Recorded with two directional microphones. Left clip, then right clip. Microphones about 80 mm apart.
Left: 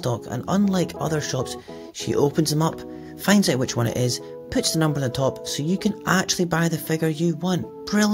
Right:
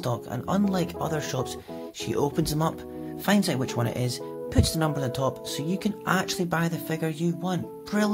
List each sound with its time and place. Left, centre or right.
0.0 s speech: left